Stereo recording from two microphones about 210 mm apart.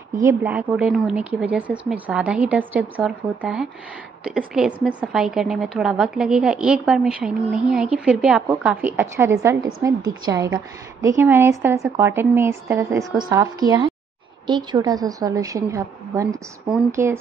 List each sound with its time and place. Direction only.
0.1 s a woman's voice: 15° right (ahead or behind)